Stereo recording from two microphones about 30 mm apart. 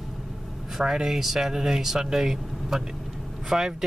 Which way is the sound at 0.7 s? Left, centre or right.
Centre.